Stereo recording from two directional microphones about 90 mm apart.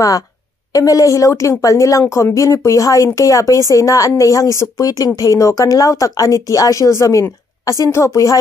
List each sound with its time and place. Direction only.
0.7 s a woman's voice: 40° left (ahead or behind)